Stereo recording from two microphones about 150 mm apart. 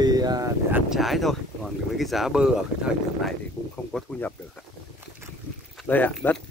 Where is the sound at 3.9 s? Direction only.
5° left (ahead or behind).